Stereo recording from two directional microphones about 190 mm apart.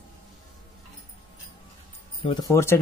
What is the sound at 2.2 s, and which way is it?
Speech, 20° left (ahead or behind).